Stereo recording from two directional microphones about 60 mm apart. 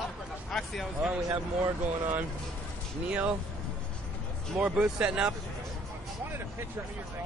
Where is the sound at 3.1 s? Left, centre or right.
Centre.